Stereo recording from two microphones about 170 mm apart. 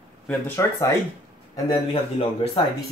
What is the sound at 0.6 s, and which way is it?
Speech, 15° left (ahead or behind).